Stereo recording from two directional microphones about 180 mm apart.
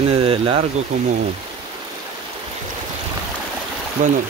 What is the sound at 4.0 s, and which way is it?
Speech, 45° right (ahead or behind).